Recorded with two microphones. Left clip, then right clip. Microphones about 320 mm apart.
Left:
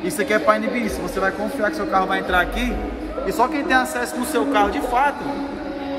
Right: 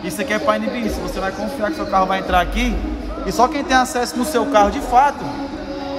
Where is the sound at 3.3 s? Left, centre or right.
Right.